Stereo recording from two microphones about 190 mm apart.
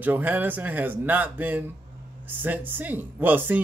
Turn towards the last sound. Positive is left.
turn(degrees=-10)  # may be behind; listen again after turning